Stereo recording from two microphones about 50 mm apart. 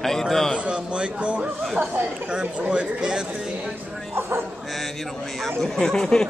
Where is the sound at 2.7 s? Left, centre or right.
Centre.